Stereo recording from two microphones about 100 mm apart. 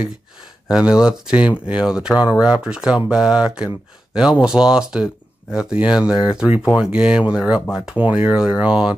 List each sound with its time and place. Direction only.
0.7 s speech: 10° right (ahead or behind)